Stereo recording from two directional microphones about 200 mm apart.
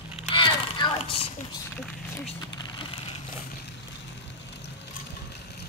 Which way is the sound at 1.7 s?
Centre (ahead or behind).